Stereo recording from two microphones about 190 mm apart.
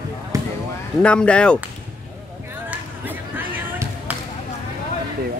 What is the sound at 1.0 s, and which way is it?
Speech, 5° left (ahead or behind).